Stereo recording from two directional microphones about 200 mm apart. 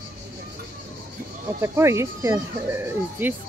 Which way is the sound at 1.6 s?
15° right (ahead or behind).